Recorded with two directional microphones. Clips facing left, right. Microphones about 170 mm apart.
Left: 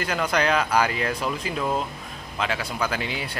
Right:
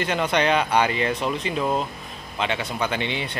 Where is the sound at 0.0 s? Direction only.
Centre (ahead or behind).